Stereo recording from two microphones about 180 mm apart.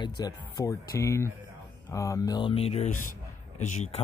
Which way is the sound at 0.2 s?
20° left (ahead or behind).